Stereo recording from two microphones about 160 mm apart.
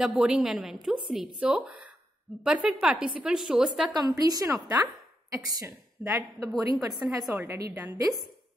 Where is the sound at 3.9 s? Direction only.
25° right (ahead or behind).